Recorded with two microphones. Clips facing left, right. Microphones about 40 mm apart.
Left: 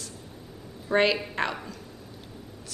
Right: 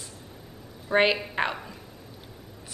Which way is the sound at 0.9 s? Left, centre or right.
Centre.